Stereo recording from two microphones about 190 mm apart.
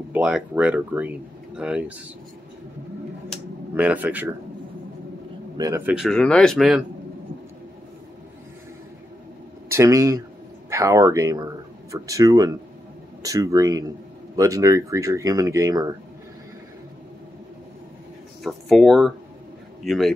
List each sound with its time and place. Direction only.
0.1 s a man's voice: 5° right (ahead or behind)
3.7 s a man's voice: 10° right (ahead or behind)
5.6 s speech: 15° right (ahead or behind)
9.7 s a man's voice: 15° right (ahead or behind)
18.4 s a man's voice: centre (ahead or behind)